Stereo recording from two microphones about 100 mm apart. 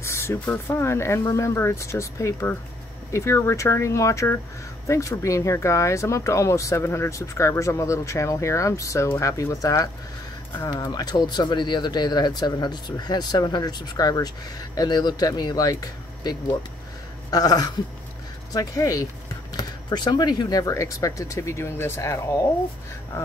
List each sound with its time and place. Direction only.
0.0 s speech: 25° left (ahead or behind)
10.7 s speech: 45° left (ahead or behind); by 22.4 s 30° left (ahead or behind)